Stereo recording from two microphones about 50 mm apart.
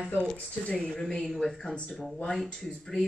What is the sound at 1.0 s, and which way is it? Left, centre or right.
Speech, centre.